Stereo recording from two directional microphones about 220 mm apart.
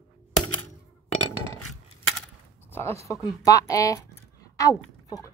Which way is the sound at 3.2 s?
15° left (ahead or behind).